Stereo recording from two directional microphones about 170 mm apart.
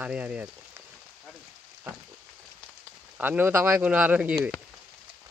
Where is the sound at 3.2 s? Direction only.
10° right (ahead or behind).